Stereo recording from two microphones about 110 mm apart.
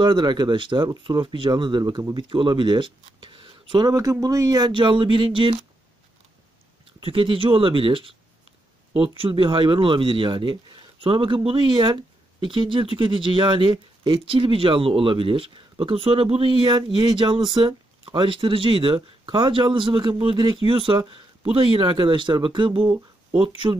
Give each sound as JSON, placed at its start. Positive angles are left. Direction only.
{"t": 0.0, "sound": "speech", "side_deg": -45}
{"t": 3.8, "sound": "speech", "side_deg": -30}
{"t": 7.0, "sound": "speech", "side_deg": -55}